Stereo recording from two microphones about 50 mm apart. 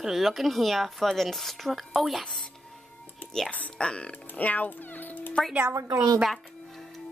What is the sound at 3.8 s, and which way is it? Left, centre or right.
Speech, left.